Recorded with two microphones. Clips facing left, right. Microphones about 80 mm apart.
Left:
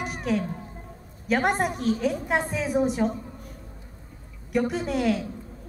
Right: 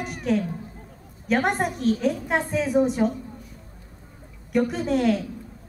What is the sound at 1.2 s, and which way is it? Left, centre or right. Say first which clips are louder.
A woman's voice: right 1 dB; centre.